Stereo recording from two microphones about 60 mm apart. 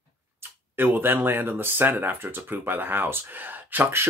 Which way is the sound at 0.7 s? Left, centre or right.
Right.